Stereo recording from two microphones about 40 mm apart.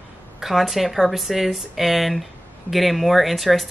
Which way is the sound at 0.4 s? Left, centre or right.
Centre.